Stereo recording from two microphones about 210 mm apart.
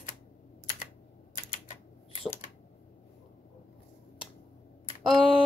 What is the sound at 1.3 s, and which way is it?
Typing, 40° left (ahead or behind).